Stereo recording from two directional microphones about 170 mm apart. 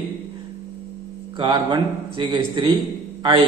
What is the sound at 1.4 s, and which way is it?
Speech, 25° right (ahead or behind).